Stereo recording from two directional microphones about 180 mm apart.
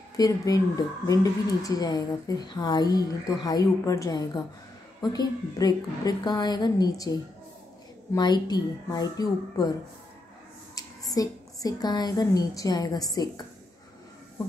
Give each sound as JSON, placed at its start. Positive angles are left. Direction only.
{"t": 0.2, "sound": "a woman's voice", "side_deg": 20}